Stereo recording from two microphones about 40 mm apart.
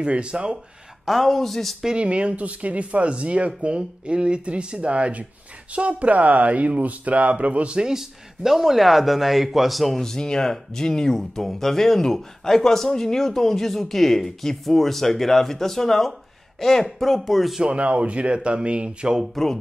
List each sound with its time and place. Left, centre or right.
0.0 s speech: right
1.0 s speech: centre
1.9 s speech: right
7.7 s speech: centre
10.0 s speech: centre
17.7 s speech: right
19.3 s speech: centre